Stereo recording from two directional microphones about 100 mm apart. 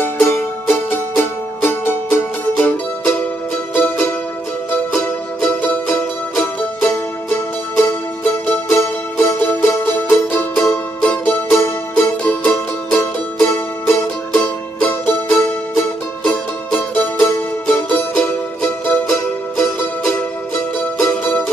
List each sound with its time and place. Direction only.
0.0 s music: 20° left (ahead or behind)
10.7 s music: 10° left (ahead or behind)
20.8 s music: 20° left (ahead or behind)